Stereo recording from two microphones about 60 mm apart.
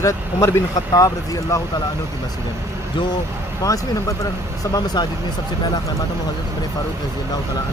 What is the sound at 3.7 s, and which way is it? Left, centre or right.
Speech, left.